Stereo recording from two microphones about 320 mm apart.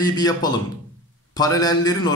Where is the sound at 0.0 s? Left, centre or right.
Centre.